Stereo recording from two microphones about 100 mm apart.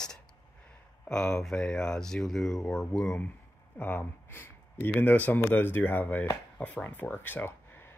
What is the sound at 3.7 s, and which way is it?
Speech, 20° left (ahead or behind).